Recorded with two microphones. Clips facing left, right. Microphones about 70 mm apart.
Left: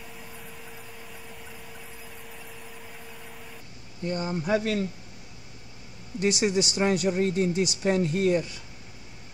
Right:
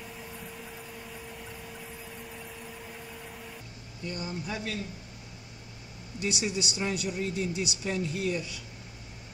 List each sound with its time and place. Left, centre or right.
4.0 s speech: left
4.5 s speech: left
6.1 s speech: left